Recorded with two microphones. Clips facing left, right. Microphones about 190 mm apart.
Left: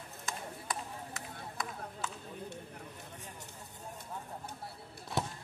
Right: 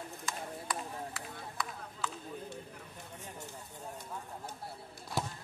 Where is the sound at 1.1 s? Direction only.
45° left (ahead or behind).